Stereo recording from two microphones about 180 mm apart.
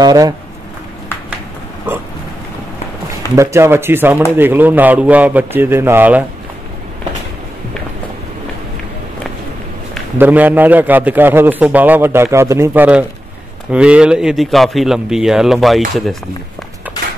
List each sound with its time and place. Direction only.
0.0 s speech: 20° right (ahead or behind)
1.9 s a sound: 10° right (ahead or behind)
3.3 s a man's voice: 15° right (ahead or behind)
10.1 s a man's voice: 10° right (ahead or behind)